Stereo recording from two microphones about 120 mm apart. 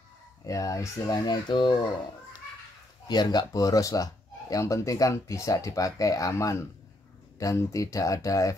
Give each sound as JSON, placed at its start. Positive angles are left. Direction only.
{"t": 0.4, "sound": "speech", "side_deg": 30}
{"t": 3.1, "sound": "speech", "side_deg": 35}